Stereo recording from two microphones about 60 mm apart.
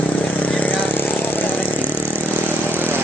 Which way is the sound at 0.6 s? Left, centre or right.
Left.